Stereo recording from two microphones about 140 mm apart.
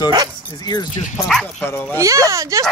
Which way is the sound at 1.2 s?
10° left (ahead or behind).